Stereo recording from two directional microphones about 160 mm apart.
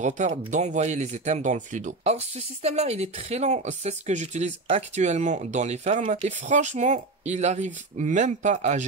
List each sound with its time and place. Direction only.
0.0 s speech: 45° right (ahead or behind)